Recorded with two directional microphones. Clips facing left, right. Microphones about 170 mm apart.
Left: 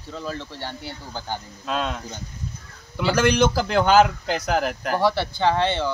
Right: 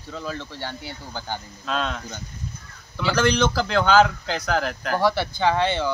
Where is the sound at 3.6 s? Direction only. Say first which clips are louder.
Right 1 dB; 10° left (ahead or behind).